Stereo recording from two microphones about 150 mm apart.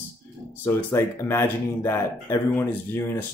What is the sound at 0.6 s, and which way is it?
Speech, 15° left (ahead or behind).